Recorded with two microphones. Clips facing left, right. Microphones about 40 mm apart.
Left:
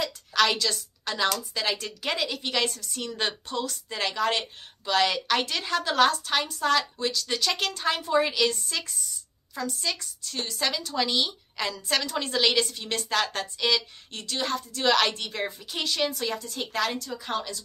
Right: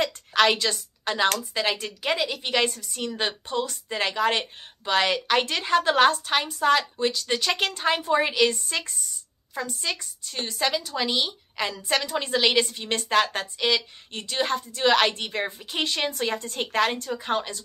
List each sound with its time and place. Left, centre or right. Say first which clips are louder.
0.3 s a woman's voice: right 2 dB; right
15.8 s a woman's voice: right 2 dB; right